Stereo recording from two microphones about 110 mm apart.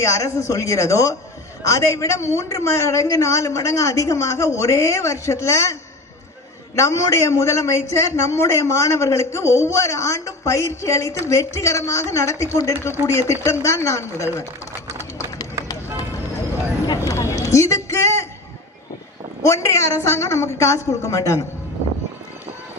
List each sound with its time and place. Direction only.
0.0 s a man's voice: 30° left (ahead or behind)
16.8 s a sound: 35° left (ahead or behind)
19.4 s a man's voice: 30° left (ahead or behind)